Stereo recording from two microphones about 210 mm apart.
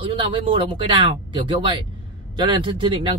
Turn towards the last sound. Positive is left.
turn(degrees=-25)  # may be behind; listen again after turning